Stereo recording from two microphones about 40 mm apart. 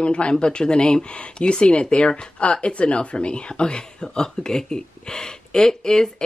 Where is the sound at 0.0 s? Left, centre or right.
Left.